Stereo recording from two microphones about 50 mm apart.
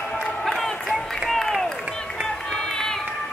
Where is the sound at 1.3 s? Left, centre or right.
Centre.